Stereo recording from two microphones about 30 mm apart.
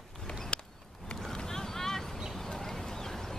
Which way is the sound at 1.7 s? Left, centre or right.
Centre.